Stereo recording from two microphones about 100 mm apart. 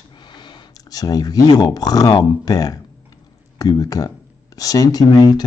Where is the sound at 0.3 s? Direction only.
50° left (ahead or behind).